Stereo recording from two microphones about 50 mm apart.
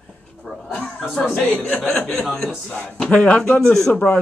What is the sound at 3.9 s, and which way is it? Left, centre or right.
Speech, left.